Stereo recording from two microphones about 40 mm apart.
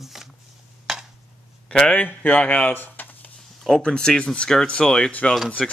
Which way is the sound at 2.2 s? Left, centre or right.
Left.